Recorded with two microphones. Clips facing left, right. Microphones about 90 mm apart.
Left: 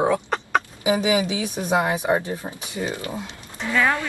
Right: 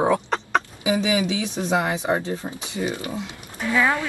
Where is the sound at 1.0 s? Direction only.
20° left (ahead or behind).